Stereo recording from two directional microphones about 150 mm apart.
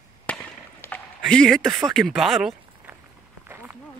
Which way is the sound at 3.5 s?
10° right (ahead or behind).